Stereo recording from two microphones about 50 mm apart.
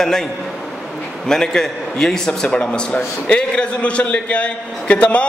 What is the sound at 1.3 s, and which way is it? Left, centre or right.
A man's voice, centre.